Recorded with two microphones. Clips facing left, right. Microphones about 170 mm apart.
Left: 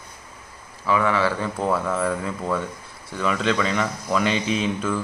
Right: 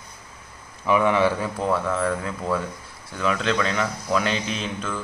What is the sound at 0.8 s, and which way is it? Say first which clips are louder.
Speech: right 2 dB; 15° right (ahead or behind).